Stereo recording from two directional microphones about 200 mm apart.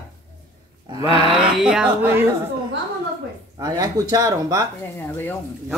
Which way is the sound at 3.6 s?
20° right (ahead or behind).